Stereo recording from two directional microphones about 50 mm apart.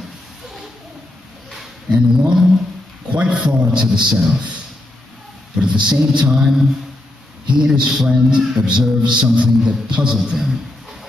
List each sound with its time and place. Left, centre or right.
1.9 s a man's voice: centre
3.1 s a man's voice: right
4.1 s a man's voice: centre
5.6 s a man's voice: centre
10.3 s a man's voice: centre